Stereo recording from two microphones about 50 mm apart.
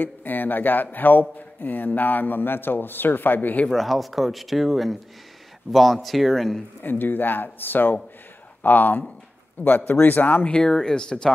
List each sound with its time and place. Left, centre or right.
0.0 s a man's voice: left
3.7 s speech: centre
6.8 s a man's voice: left
10.4 s speech: centre